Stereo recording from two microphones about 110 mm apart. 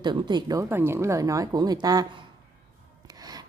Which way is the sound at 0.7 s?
20° right (ahead or behind).